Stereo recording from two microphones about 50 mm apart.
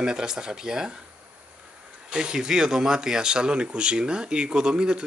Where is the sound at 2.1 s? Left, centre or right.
Centre.